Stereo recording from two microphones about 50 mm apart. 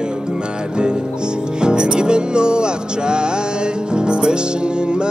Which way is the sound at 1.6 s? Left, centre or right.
Centre.